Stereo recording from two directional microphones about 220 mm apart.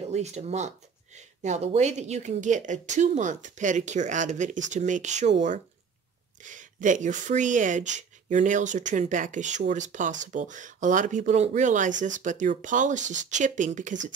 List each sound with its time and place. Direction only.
0.1 s speech: 30° right (ahead or behind)
6.4 s speech: 35° right (ahead or behind)